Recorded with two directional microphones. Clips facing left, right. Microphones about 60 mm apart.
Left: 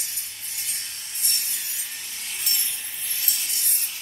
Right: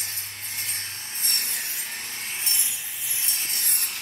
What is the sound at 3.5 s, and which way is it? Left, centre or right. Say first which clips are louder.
Spray: right 2 dB; right.